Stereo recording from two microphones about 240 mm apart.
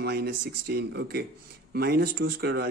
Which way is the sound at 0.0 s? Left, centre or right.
Right.